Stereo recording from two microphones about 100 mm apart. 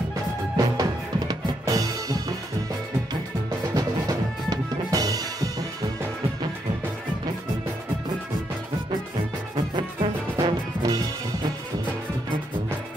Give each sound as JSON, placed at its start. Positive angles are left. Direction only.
{"t": 0.6, "sound": "drum", "side_deg": -35}
{"t": 3.7, "sound": "music", "side_deg": -35}
{"t": 9.6, "sound": "music", "side_deg": -50}